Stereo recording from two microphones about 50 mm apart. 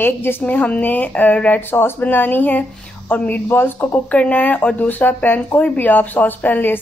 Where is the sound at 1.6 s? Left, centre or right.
Left.